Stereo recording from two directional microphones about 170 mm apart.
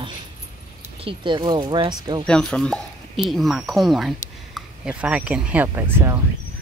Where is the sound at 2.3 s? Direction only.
5° left (ahead or behind); by 6.2 s 15° right (ahead or behind).